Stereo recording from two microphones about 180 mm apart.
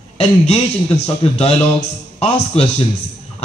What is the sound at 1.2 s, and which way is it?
A man's voice, 35° left (ahead or behind).